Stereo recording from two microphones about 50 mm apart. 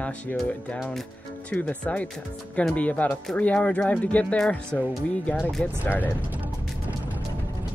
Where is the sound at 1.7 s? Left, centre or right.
Left.